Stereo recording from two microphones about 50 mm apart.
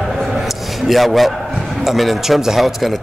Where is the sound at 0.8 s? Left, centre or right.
Centre.